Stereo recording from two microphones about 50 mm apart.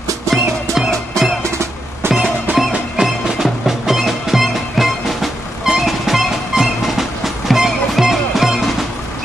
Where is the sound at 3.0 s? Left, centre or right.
Centre.